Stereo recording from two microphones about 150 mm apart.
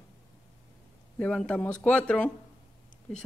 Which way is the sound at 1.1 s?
10° left (ahead or behind).